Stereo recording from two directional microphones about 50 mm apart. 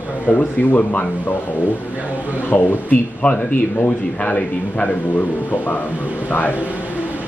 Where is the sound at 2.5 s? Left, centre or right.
Left.